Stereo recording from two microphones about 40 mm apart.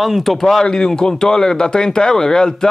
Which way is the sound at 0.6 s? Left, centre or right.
Centre.